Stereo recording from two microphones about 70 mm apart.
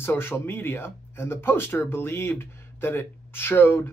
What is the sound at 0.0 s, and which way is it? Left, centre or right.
Speech, left.